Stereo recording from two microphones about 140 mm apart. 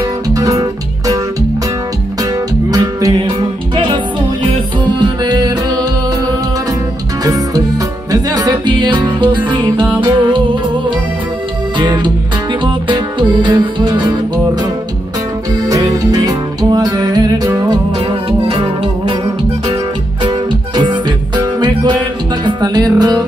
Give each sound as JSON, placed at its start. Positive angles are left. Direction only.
{"t": 0.3, "sound": "music", "side_deg": -25}
{"t": 2.7, "sound": "music", "side_deg": -25}
{"t": 7.2, "sound": "music", "side_deg": -25}
{"t": 11.8, "sound": "music", "side_deg": -35}
{"t": 15.7, "sound": "music", "side_deg": -25}
{"t": 20.2, "sound": "music", "side_deg": -30}